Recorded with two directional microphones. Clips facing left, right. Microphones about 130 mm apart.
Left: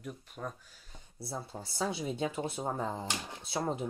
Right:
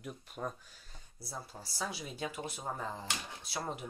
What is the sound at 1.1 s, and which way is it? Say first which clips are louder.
Speech: left 5 dB; 25° left (ahead or behind).